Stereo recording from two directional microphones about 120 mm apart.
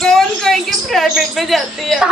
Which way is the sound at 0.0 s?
5° left (ahead or behind).